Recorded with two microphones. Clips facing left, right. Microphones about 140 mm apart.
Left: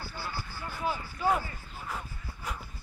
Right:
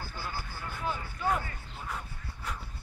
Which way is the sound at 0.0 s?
50° right (ahead or behind).